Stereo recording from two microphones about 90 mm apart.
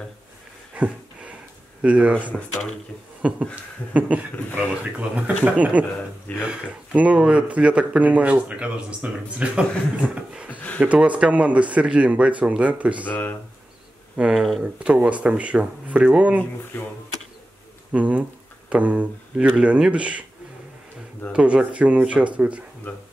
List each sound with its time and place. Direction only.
0.7 s a sound: 15° right (ahead or behind)
1.8 s speech: 15° right (ahead or behind)
3.2 s speech: 15° right (ahead or behind)
13.0 s speech: 20° left (ahead or behind)
14.1 s speech: 15° right (ahead or behind)
16.7 s speech: 20° left (ahead or behind)
17.9 s speech: 15° right (ahead or behind)
21.3 s speech: 10° right (ahead or behind)
22.9 s speech: 20° left (ahead or behind)